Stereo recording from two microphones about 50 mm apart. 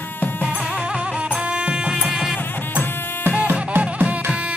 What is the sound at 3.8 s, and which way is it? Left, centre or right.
Music, right.